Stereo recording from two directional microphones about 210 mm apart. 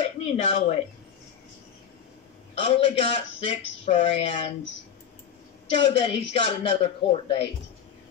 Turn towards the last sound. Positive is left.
turn(degrees=25)  # may be behind; listen again after turning